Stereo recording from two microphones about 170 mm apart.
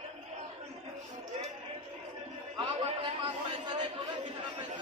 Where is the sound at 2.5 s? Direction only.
25° right (ahead or behind).